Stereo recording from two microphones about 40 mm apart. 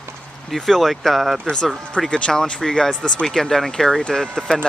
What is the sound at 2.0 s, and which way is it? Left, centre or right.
Speech, centre.